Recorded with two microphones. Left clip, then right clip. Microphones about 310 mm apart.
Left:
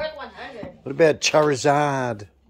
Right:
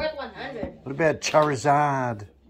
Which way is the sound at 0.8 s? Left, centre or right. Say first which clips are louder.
Left 6 dB; centre.